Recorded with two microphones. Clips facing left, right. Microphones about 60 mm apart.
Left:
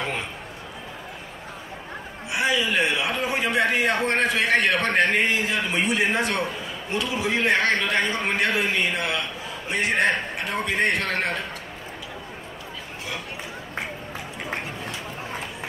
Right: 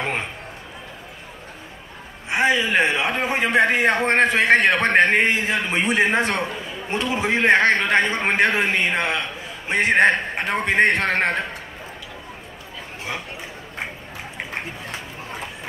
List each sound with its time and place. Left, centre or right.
2.2 s a man's voice: right